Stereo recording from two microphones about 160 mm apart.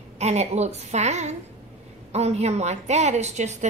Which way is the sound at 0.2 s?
45° right (ahead or behind).